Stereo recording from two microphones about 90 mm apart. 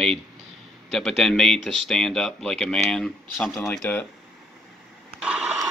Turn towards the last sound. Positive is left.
turn(degrees=-5)  # may be behind; listen again after turning